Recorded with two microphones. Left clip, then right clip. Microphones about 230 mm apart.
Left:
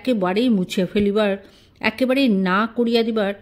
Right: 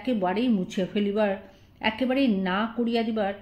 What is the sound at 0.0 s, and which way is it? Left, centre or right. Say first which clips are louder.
A woman's voice: left 6 dB; left.